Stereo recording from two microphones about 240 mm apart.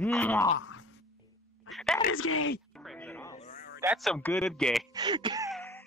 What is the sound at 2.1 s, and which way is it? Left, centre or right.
Speech, left.